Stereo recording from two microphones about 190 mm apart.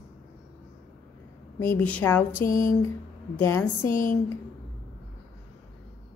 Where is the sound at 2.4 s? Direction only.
45° left (ahead or behind).